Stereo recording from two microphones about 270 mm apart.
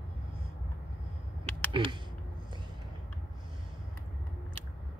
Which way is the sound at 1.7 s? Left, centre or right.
Centre.